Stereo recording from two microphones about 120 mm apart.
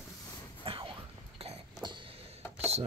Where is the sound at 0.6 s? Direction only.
50° right (ahead or behind).